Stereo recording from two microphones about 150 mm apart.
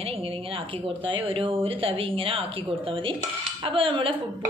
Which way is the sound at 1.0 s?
35° right (ahead or behind).